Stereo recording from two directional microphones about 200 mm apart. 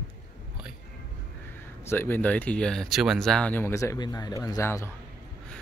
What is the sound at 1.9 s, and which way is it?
Speech, 10° left (ahead or behind).